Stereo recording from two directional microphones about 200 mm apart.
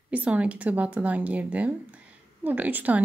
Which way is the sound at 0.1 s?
5° right (ahead or behind).